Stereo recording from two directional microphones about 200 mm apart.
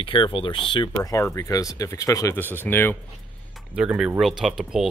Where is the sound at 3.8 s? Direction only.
5° right (ahead or behind).